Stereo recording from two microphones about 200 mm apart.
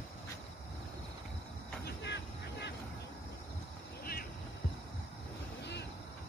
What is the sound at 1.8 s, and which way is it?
Vehicle, 60° left (ahead or behind).